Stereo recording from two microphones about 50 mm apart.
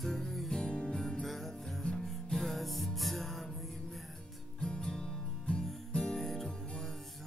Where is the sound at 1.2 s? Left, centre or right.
Centre.